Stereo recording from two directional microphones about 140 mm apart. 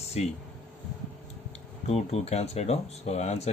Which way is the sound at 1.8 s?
50° left (ahead or behind).